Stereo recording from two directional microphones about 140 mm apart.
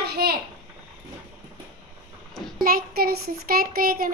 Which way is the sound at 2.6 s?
90° right.